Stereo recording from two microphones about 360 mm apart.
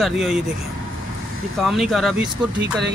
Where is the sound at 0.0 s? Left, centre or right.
Centre.